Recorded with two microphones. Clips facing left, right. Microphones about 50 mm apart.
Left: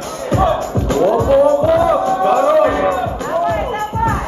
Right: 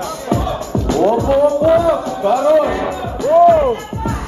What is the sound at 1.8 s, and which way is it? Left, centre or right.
Music, left.